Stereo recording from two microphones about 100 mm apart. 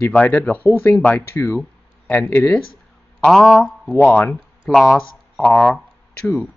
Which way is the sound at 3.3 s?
5° left (ahead or behind).